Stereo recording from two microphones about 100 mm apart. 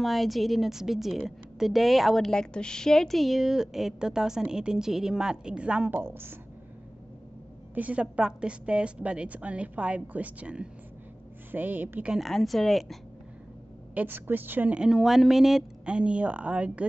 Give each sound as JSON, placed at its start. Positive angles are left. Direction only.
{"t": 0.0, "sound": "a woman's voice", "side_deg": 0}
{"t": 7.7, "sound": "a woman's voice", "side_deg": -15}
{"t": 12.1, "sound": "a woman's voice", "side_deg": 0}
{"t": 13.9, "sound": "a woman's voice", "side_deg": -20}